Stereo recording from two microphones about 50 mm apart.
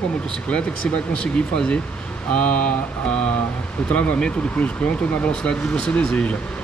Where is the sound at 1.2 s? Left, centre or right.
Centre.